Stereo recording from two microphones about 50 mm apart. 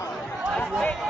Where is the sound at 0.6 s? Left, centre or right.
Left.